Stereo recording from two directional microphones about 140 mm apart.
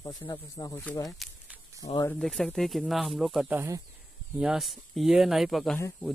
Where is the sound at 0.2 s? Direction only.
25° left (ahead or behind).